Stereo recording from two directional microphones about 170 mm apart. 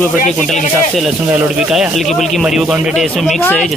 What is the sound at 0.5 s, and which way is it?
Speech, centre (ahead or behind).